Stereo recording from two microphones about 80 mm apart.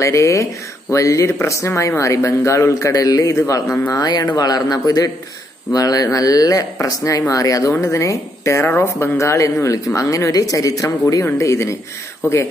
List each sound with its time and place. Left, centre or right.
0.0 s speech: left
3.9 s speech: left
8.6 s speech: left